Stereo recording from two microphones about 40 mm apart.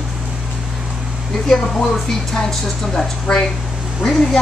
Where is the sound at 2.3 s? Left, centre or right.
Centre.